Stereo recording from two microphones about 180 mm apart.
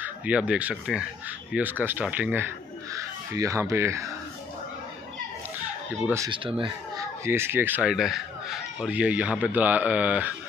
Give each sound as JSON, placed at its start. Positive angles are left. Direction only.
{"t": 0.0, "sound": "speech", "side_deg": -5}
{"t": 6.0, "sound": "speech", "side_deg": -15}